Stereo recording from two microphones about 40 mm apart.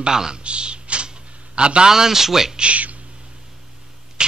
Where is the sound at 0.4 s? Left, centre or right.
Right.